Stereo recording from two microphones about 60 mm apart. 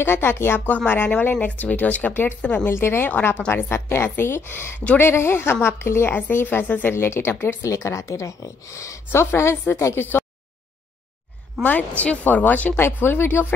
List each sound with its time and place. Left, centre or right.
0.0 s a woman's voice: left
2.7 s a woman's voice: left
6.1 s a woman's voice: left
7.6 s a woman's voice: left
9.1 s a woman's voice: left
9.9 s a woman's voice: left
12.0 s speech: left
12.7 s a woman's voice: left